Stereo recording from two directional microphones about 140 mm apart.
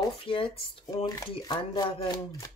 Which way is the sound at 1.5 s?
30° left (ahead or behind).